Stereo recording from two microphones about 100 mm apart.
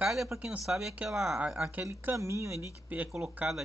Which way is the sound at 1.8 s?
30° right (ahead or behind).